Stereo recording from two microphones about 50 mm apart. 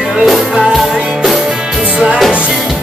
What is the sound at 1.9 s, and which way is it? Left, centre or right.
Music, right.